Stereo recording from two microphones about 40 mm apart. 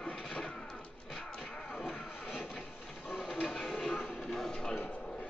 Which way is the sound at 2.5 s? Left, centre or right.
Left.